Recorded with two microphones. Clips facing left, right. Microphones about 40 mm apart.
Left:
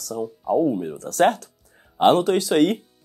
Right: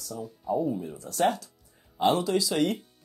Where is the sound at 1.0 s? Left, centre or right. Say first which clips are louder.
Left 7 dB; left.